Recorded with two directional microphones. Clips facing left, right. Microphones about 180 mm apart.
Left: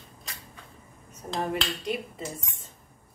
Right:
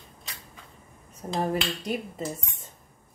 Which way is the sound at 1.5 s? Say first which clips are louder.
Right 2 dB; 40° right (ahead or behind).